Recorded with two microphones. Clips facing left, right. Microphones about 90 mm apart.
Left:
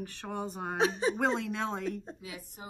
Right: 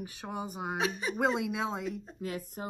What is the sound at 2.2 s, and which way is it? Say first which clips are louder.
Speech: right 8 dB; 50° right (ahead or behind).